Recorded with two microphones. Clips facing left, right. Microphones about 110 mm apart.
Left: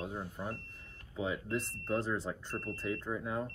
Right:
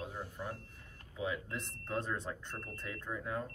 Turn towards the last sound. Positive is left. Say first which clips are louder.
# left 3 dB
turn(degrees=20)  # may be behind; listen again after turning